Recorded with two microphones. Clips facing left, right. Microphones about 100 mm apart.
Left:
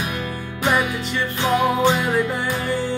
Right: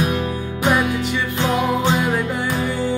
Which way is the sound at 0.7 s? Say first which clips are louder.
Right 2 dB; 5° right (ahead or behind).